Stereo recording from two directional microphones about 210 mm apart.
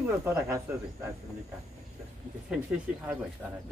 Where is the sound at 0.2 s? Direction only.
15° right (ahead or behind).